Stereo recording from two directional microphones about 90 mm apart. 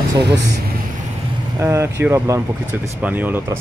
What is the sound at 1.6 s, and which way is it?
Speech, 30° right (ahead or behind).